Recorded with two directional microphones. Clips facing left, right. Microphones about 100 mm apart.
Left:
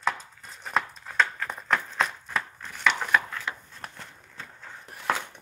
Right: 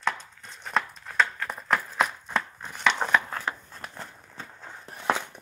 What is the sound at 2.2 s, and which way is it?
Chopping, 20° right (ahead or behind).